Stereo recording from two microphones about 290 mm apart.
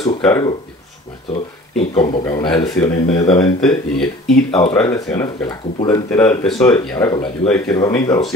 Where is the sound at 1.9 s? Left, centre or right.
Centre.